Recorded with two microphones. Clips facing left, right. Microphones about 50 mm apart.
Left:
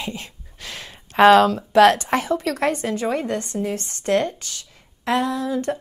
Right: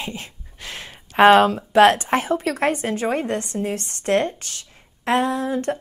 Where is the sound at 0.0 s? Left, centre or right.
Right.